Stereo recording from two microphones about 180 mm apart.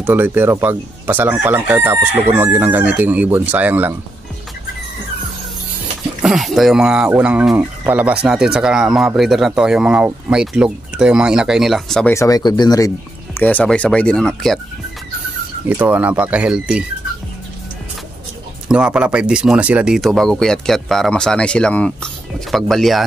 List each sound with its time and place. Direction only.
0.0 s chicken: 10° right (ahead or behind)
6.2 s speech: centre (ahead or behind)
12.1 s speech: 20° left (ahead or behind)
13.4 s speech: 10° left (ahead or behind)
15.7 s chicken: 10° right (ahead or behind)
18.7 s speech: 5° right (ahead or behind)